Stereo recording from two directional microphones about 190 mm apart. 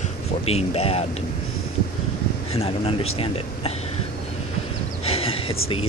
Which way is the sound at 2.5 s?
30° left (ahead or behind).